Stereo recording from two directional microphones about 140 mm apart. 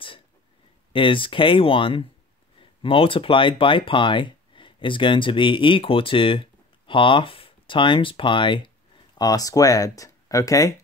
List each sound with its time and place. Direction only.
0.9 s speech: 35° left (ahead or behind)
9.2 s speech: 25° left (ahead or behind)